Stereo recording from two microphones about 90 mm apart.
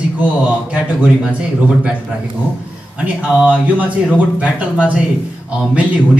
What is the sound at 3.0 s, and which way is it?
A man's voice, 15° right (ahead or behind).